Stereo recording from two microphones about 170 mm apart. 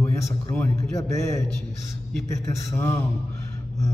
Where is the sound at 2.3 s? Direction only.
15° left (ahead or behind).